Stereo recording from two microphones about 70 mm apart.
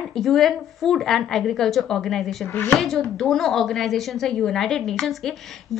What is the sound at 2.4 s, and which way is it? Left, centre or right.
Speech, left.